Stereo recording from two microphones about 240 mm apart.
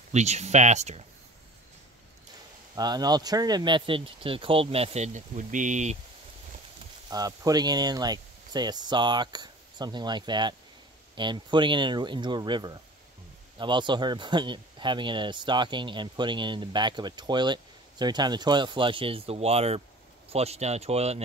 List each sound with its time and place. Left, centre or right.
0.1 s speech: right
2.7 s speech: centre
7.1 s speech: centre